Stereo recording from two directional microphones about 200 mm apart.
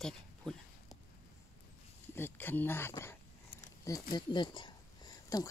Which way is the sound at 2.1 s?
10° left (ahead or behind).